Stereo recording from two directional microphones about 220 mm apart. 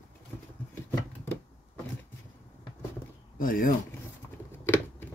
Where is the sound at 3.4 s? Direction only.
40° left (ahead or behind).